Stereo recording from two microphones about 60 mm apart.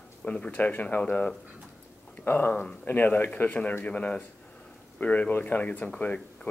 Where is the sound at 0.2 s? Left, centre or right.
Centre.